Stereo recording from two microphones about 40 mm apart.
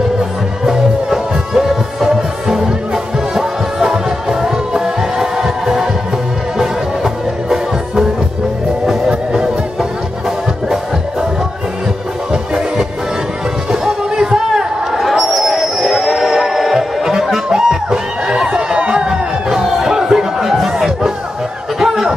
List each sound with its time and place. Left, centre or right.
0.7 s music: centre
9.1 s music: right
12.3 s music: right
13.7 s a sound: centre
19.6 s music: centre
21.7 s a sound: centre